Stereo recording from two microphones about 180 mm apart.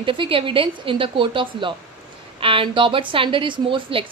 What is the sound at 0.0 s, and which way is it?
A woman's voice, 30° right (ahead or behind).